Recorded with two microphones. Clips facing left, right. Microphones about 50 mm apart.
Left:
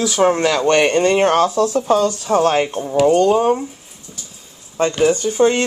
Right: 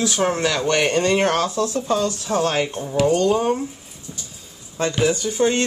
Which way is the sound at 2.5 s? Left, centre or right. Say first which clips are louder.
Left 5 dB; left.